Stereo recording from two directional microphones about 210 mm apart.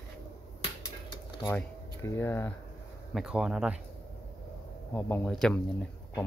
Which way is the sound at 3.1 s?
5° right (ahead or behind).